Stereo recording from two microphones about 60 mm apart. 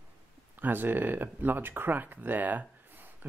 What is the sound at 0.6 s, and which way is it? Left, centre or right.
Speech, right.